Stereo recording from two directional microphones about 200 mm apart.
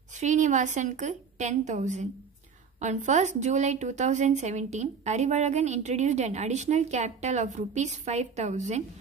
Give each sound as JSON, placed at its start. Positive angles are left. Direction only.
{"t": 0.1, "sound": "a woman's voice", "side_deg": -35}